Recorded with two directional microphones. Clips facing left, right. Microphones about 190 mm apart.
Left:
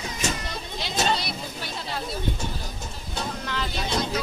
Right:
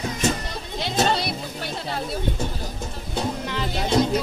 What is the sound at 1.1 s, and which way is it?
Music, 55° right (ahead or behind).